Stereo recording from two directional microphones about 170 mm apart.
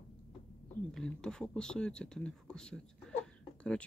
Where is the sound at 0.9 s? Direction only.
5° left (ahead or behind).